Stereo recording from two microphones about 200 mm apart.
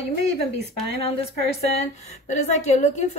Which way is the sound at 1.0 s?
30° left (ahead or behind).